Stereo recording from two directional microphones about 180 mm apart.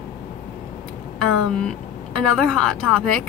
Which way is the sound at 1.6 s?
5° left (ahead or behind).